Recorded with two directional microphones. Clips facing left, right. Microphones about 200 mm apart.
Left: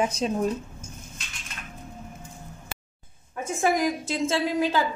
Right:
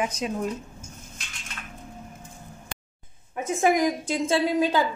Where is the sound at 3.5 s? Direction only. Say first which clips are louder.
Right 2 dB; 15° right (ahead or behind).